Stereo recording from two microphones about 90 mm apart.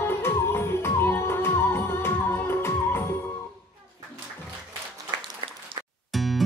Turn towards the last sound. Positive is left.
turn(degrees=0)  # may be behind; listen again after turning